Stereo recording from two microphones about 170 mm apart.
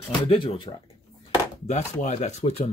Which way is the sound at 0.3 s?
25° left (ahead or behind).